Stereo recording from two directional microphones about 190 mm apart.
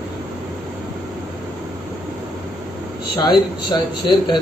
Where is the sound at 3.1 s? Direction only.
20° left (ahead or behind).